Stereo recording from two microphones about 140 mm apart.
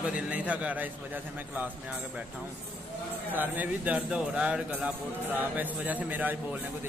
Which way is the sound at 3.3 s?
10° right (ahead or behind).